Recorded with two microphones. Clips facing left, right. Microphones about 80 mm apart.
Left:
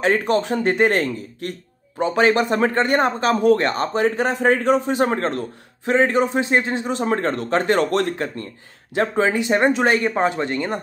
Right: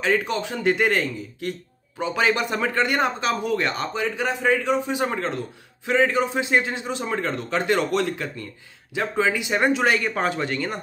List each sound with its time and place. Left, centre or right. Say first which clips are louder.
0.0 s a man's voice: left 4 dB; left
2.0 s a man's voice: left 5 dB; left